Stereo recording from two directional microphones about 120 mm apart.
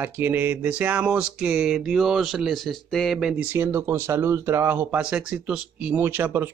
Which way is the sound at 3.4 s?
15° right (ahead or behind).